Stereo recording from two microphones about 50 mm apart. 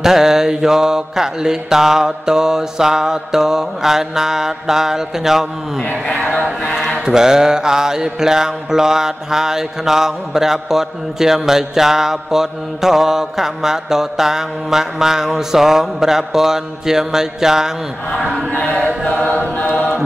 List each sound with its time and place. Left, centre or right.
0.0 s mantra: centre
7.1 s mantra: centre
18.6 s chant: left
19.2 s choir: left